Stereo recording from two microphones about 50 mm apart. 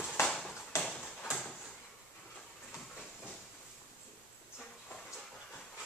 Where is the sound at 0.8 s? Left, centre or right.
Centre.